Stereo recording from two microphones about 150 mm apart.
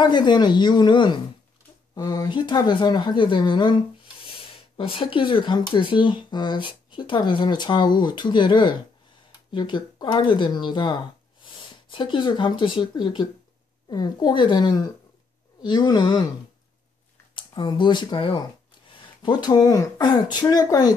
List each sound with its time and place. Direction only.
0.0 s speech: 30° left (ahead or behind)
17.4 s speech: 30° left (ahead or behind)